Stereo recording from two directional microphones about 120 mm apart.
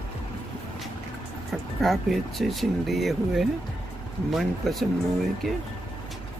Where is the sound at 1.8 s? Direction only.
Centre (ahead or behind).